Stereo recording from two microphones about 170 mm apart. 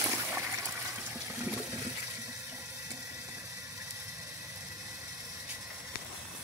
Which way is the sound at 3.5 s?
20° right (ahead or behind).